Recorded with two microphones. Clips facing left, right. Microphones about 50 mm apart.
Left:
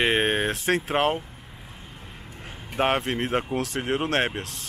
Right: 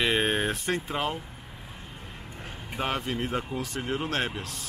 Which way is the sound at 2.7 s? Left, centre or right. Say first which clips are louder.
Left 6 dB; left.